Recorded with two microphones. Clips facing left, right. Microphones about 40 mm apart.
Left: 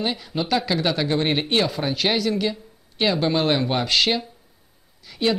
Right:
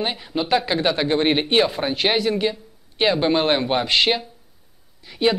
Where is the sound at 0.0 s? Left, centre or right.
Right.